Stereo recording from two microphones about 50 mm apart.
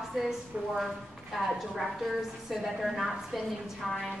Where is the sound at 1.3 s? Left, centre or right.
Centre.